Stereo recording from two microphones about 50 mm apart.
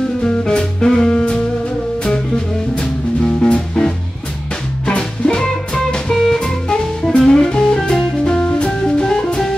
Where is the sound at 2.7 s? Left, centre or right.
Centre.